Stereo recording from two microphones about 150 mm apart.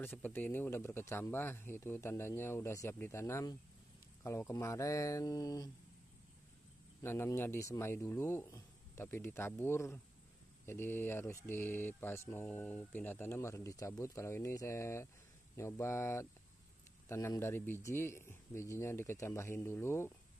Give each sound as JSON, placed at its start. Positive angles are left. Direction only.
{"t": 0.0, "sound": "speech", "side_deg": 15}
{"t": 7.0, "sound": "speech", "side_deg": 15}